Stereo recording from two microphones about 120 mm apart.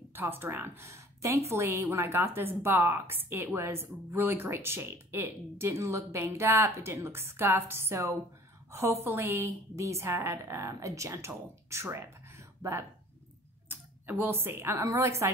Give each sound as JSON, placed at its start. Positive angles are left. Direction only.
{"t": 0.1, "sound": "a woman's voice", "side_deg": -20}